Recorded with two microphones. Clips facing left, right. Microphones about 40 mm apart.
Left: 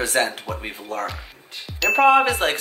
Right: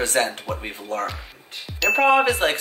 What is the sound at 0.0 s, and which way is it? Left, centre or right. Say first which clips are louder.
Speech: even; centre.